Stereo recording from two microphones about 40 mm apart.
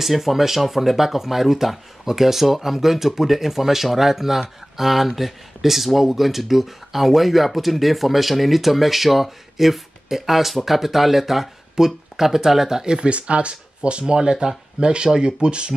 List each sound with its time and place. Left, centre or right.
0.0 s speech: centre; by 15.7 s right